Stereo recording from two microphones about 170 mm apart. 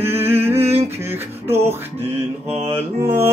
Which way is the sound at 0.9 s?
15° right (ahead or behind).